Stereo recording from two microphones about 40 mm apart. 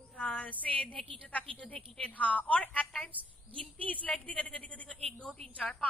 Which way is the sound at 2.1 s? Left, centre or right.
Left.